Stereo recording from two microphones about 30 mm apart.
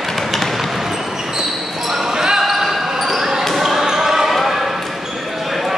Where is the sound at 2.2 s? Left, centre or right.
Centre.